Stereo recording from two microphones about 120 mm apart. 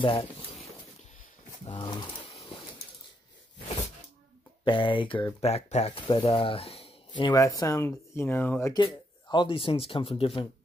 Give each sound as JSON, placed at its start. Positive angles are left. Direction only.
{"t": 0.0, "sound": "speech", "side_deg": 50}
{"t": 1.7, "sound": "speech", "side_deg": 45}
{"t": 4.6, "sound": "speech", "side_deg": 45}
{"t": 7.3, "sound": "speech", "side_deg": 25}
{"t": 8.7, "sound": "speech", "side_deg": 40}